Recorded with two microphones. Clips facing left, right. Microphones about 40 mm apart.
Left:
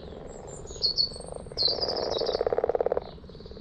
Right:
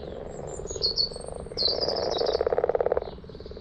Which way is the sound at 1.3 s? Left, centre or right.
Centre.